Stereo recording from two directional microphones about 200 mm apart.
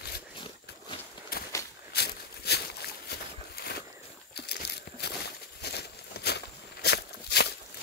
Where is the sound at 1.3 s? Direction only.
50° left (ahead or behind).